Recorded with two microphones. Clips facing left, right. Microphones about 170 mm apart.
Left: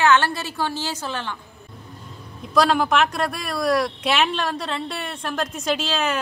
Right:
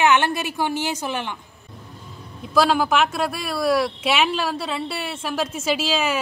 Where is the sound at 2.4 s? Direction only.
Centre (ahead or behind).